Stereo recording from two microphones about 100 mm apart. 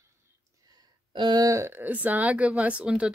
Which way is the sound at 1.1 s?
45° right (ahead or behind).